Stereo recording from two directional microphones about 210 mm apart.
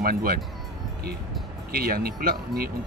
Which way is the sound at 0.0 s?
45° right (ahead or behind).